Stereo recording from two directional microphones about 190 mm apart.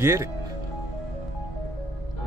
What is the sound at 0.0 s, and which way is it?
Speech, 15° right (ahead or behind).